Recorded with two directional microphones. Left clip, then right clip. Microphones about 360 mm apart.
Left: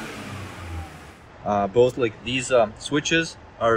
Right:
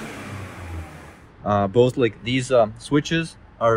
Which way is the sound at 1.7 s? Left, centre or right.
Right.